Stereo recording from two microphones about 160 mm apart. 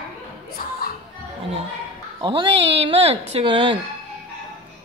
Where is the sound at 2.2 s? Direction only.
30° right (ahead or behind).